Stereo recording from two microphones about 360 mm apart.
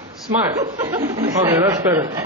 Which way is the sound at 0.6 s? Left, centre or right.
Centre.